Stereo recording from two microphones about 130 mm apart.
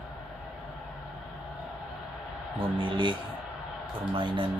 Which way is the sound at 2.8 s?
40° right (ahead or behind).